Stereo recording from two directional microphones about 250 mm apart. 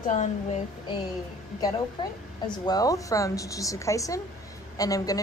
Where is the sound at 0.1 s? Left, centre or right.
Left.